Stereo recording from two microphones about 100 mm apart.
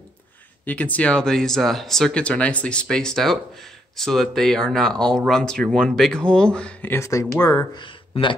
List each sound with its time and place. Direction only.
0.7 s speech: 15° left (ahead or behind)
7.0 s speech: 30° left (ahead or behind)
7.7 s speech: 55° left (ahead or behind)